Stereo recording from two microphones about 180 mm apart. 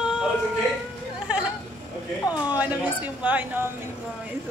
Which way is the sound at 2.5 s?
10° right (ahead or behind).